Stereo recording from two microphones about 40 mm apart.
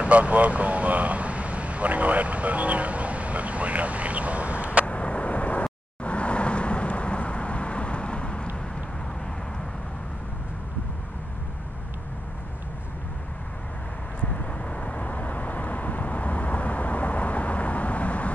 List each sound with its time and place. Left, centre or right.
0.0 s a sound: right
4.8 s vehicle: left
14.2 s vehicle: left